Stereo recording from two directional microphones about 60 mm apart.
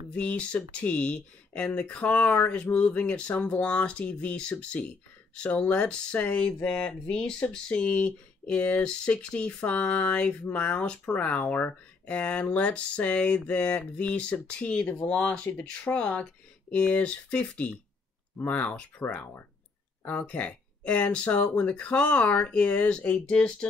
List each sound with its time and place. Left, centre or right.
0.1 s speech: left